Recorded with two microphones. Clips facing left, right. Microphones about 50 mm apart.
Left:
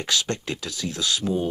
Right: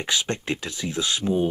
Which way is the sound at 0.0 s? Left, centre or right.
Right.